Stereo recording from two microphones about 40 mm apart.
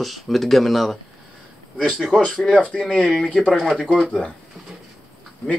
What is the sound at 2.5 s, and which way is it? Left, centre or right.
Speech, left.